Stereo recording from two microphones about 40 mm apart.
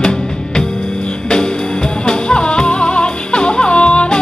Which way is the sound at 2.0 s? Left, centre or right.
Left.